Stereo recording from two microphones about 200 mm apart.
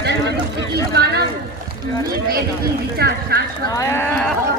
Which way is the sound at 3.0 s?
50° right (ahead or behind).